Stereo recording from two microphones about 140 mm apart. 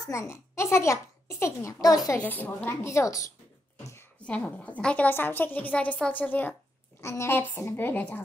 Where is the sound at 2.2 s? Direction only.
15° left (ahead or behind).